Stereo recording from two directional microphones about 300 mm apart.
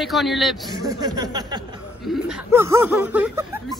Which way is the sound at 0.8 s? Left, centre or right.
Centre.